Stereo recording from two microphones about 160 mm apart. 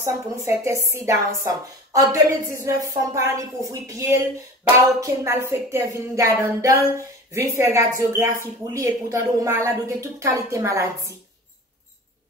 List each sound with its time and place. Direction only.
0.0 s speech: 15° right (ahead or behind)